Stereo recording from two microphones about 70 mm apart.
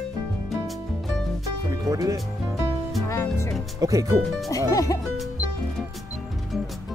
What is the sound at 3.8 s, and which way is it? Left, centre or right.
Speech, right.